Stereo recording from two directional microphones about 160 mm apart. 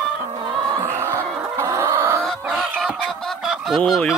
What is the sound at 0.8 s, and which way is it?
Chicken, 15° right (ahead or behind).